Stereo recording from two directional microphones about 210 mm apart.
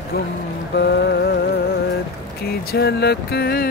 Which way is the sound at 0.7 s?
55° left (ahead or behind).